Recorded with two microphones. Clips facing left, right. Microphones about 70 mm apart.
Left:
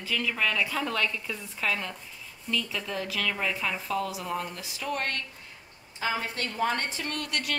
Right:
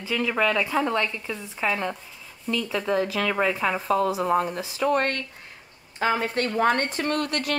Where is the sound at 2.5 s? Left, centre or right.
Right.